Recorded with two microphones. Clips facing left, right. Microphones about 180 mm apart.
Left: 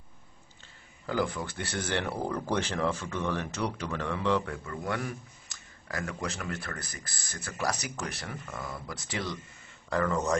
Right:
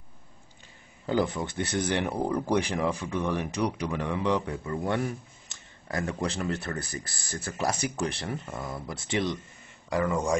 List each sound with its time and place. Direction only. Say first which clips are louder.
1.0 s speech: right 4 dB; 25° right (ahead or behind)
4.6 s speech: right 5 dB; 25° right (ahead or behind)
9.8 s speech: right 2 dB; 10° right (ahead or behind)